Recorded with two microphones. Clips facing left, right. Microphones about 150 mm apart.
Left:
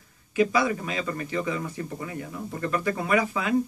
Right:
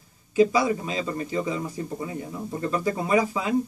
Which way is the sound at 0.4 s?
25° right (ahead or behind).